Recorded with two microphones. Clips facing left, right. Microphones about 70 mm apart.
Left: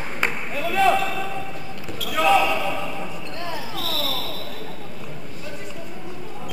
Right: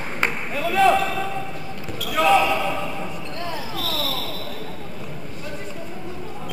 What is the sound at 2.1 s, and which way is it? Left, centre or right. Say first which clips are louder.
Basketball bounce: right 1 dB; centre.